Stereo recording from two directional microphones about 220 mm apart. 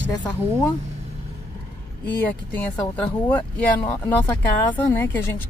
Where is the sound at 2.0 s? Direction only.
10° left (ahead or behind).